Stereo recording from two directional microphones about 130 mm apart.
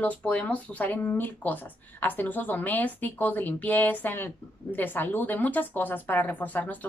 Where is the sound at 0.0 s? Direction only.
10° left (ahead or behind).